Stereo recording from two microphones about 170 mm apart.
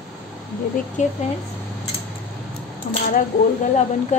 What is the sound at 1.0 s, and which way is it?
Speech, 45° left (ahead or behind).